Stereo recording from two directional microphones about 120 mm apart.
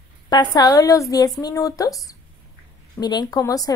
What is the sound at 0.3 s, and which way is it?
Speech, 35° left (ahead or behind).